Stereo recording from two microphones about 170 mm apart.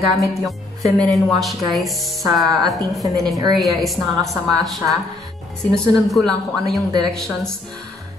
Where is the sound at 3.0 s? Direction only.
20° right (ahead or behind).